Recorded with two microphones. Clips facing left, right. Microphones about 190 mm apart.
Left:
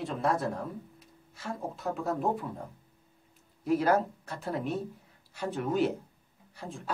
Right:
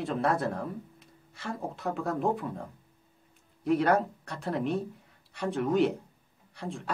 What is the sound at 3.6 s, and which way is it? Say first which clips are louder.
Speech: right 1 dB; centre (ahead or behind).